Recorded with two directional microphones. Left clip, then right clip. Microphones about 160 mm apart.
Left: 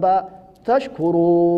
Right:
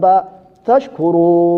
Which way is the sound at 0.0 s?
15° left (ahead or behind).